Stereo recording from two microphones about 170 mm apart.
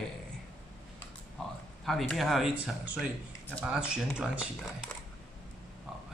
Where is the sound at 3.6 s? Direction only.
5° right (ahead or behind).